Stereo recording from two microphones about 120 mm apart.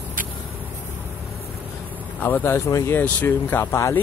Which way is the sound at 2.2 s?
15° left (ahead or behind).